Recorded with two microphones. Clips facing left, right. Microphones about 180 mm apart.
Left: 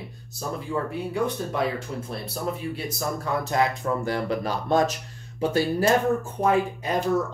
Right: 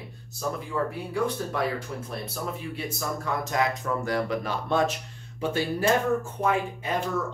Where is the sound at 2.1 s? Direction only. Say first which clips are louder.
Left 4 dB; 35° left (ahead or behind).